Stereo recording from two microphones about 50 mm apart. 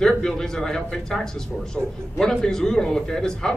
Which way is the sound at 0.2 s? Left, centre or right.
Centre.